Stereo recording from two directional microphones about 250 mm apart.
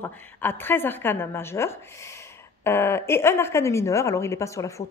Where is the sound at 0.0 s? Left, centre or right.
Centre.